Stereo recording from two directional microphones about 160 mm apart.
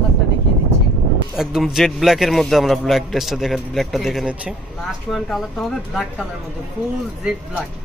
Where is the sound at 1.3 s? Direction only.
5° right (ahead or behind).